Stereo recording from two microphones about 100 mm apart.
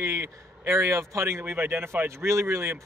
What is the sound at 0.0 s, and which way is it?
Speech, 30° right (ahead or behind).